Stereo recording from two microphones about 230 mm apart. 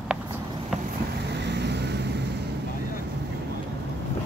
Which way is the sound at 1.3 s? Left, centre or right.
Right.